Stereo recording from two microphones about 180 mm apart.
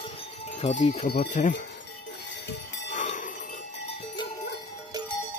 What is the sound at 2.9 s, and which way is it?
Jingle bell, 40° left (ahead or behind).